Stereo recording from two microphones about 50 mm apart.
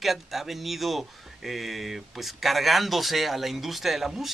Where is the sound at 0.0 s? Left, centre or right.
Centre.